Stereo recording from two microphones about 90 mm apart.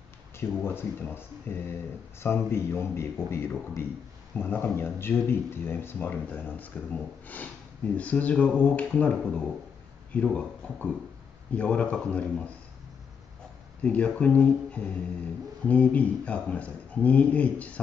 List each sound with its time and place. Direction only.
0.4 s a man's voice: 25° left (ahead or behind)
13.8 s a man's voice: 15° left (ahead or behind)